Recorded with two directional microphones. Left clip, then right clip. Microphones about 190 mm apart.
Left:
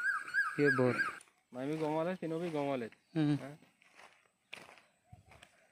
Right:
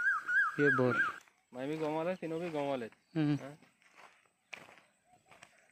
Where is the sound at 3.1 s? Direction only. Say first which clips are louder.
Even; 5° left (ahead or behind).